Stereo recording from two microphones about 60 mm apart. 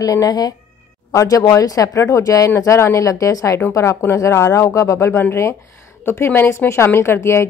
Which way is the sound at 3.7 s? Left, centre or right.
Left.